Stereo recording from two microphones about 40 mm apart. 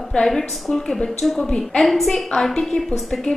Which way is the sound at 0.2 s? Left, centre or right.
Centre.